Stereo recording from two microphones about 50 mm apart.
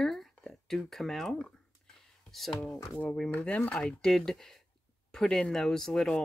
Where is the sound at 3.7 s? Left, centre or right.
Centre.